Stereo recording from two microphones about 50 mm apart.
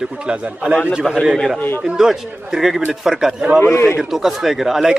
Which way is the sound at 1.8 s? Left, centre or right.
Centre.